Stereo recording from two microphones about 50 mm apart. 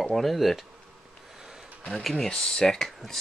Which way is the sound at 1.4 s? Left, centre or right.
Centre.